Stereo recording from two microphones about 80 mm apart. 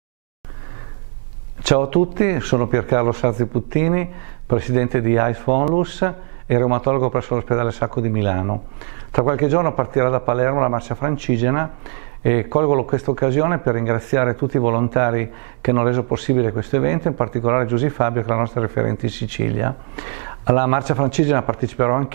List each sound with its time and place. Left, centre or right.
1.7 s speech: centre